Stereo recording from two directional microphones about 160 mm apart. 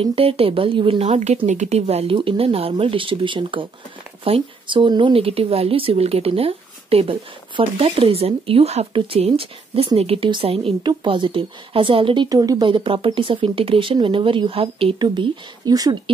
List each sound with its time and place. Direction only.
0.0 s speech: 35° right (ahead or behind)